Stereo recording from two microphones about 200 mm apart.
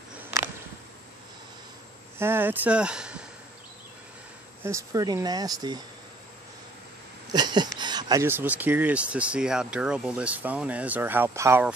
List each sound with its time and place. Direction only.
2.1 s speech: 10° right (ahead or behind)
4.6 s speech: 15° right (ahead or behind)
7.3 s a sound: 20° right (ahead or behind)
7.8 s speech: 20° right (ahead or behind)